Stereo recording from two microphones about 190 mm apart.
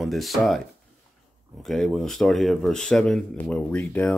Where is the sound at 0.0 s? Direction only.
Centre (ahead or behind).